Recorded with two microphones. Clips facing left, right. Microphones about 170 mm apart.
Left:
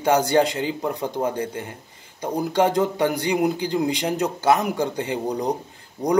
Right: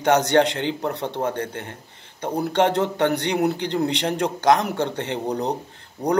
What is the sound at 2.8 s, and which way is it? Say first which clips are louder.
A man's voice: even; 10° left (ahead or behind).